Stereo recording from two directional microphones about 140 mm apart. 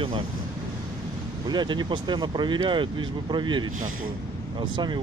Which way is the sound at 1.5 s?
30° right (ahead or behind).